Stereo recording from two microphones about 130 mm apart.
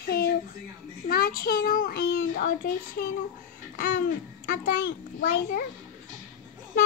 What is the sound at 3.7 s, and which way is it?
Babbling, 90° left.